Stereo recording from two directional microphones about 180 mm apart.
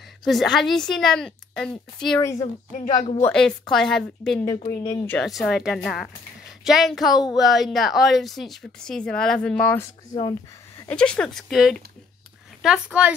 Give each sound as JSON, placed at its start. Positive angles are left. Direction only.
{"t": 0.2, "sound": "a woman's voice", "side_deg": 0}
{"t": 2.2, "sound": "speech", "side_deg": 20}
{"t": 3.2, "sound": "a woman's voice", "side_deg": 5}
{"t": 4.6, "sound": "speech", "side_deg": 20}
{"t": 5.1, "sound": "a woman's voice", "side_deg": 0}
{"t": 10.9, "sound": "a woman's voice", "side_deg": 5}